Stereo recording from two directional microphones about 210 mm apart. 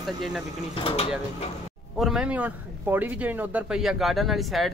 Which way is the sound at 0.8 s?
25° left (ahead or behind).